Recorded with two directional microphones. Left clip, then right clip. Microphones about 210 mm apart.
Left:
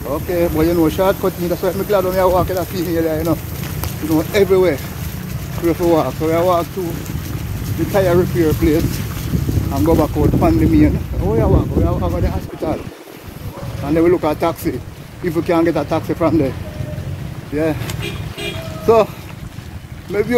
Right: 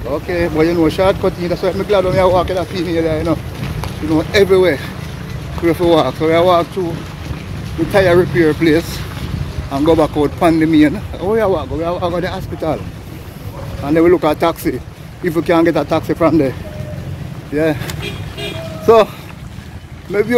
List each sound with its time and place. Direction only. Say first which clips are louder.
0.1 s speech: right 1 dB; 15° left (ahead or behind)
5.7 s speech: right 3 dB; 10° right (ahead or behind)
7.9 s speech: right 4 dB; 10° right (ahead or behind)
9.8 s speech: right 3 dB; 15° right (ahead or behind)
13.8 s speech: right 3 dB; 20° right (ahead or behind)
17.6 s speech: right 3 dB; 10° right (ahead or behind)
20.1 s speech: right 3 dB; 10° right (ahead or behind)